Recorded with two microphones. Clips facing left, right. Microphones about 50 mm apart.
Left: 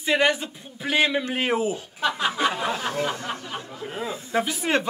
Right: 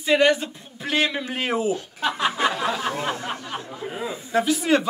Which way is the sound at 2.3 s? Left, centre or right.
Right.